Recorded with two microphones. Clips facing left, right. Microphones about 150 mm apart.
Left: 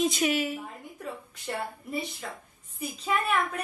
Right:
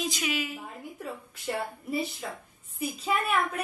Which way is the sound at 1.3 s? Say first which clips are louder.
Right 3 dB; centre (ahead or behind).